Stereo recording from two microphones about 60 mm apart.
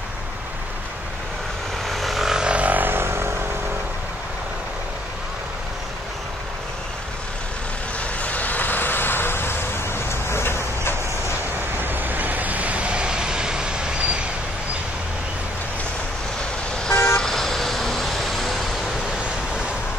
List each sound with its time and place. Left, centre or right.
1.9 s vehicle: centre; by 3.3 s right
8.2 s vehicle: left
11.8 s vehicle: right
16.9 s vehicle: left
17.2 s vehicle: centre